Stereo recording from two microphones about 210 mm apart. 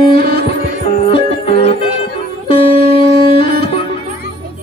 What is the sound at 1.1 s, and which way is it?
Music, 30° left (ahead or behind).